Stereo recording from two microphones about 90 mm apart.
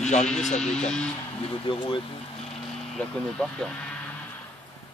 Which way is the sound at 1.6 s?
65° left (ahead or behind).